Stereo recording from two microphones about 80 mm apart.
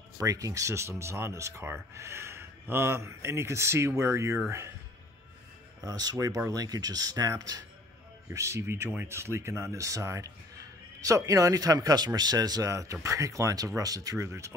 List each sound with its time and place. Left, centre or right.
0.2 s speech: right
5.8 s speech: right
8.3 s speech: right